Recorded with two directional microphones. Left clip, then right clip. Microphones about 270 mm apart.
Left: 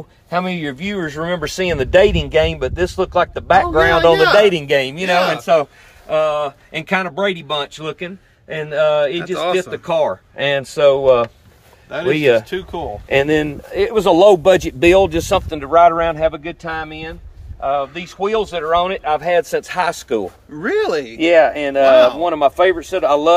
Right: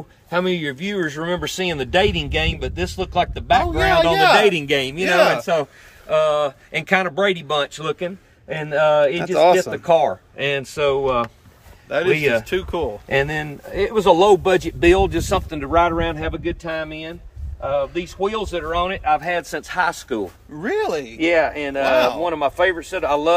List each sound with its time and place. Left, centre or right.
0.3 s speech: centre
3.6 s speech: centre
4.5 s speech: centre
5.4 s speech: centre
10.3 s speech: centre
12.4 s speech: centre
13.1 s speech: left
20.5 s speech: centre
21.2 s speech: left
21.8 s speech: centre
22.2 s speech: left